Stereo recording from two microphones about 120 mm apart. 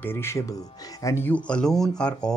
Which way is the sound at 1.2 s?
10° left (ahead or behind).